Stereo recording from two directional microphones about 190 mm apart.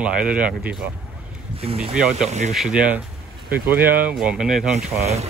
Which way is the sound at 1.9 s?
5° right (ahead or behind).